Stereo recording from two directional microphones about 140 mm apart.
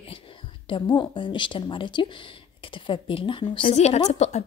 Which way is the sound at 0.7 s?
35° left (ahead or behind).